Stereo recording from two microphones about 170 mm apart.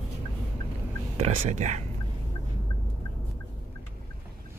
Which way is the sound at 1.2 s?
40° right (ahead or behind).